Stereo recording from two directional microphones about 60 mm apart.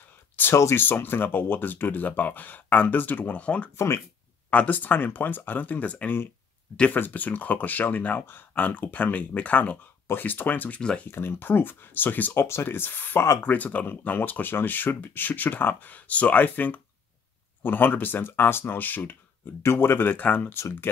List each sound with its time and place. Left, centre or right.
0.4 s a sound: left
0.7 s speech: left
3.7 s speech: left
4.5 s speech: left
10.8 s speech: centre
11.1 s speech: left
12.4 s speech: left
19.6 s speech: left